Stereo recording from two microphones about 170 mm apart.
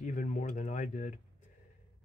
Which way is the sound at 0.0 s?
50° left (ahead or behind).